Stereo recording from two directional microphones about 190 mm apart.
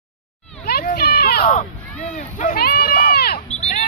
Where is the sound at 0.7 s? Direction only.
55° left (ahead or behind).